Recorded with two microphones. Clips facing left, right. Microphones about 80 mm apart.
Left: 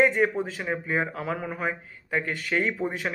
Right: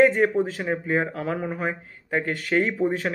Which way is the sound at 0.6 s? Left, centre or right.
Right.